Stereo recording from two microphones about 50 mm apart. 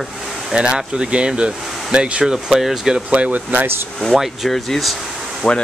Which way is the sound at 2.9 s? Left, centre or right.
Right.